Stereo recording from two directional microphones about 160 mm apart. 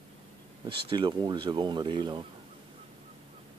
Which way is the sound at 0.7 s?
30° right (ahead or behind).